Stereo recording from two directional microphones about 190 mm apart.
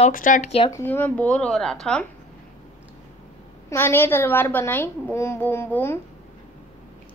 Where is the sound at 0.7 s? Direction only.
10° left (ahead or behind).